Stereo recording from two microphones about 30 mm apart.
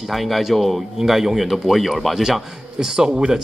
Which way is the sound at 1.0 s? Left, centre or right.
Centre.